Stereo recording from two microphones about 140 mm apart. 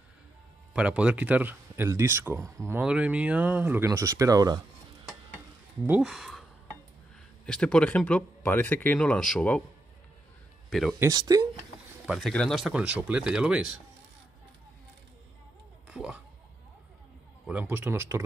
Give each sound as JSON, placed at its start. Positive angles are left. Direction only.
{"t": 0.7, "sound": "speech", "side_deg": -10}
{"t": 2.8, "sound": "speech", "side_deg": -10}
{"t": 5.9, "sound": "speech", "side_deg": -5}
{"t": 7.4, "sound": "speech", "side_deg": 5}
{"t": 10.7, "sound": "speech", "side_deg": 5}
{"t": 11.0, "sound": "speech", "side_deg": -25}
{"t": 12.1, "sound": "speech", "side_deg": 5}
{"t": 15.9, "sound": "speech", "side_deg": -10}
{"t": 17.5, "sound": "speech", "side_deg": -10}